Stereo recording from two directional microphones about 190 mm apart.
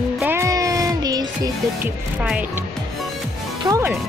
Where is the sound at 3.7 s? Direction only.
15° right (ahead or behind).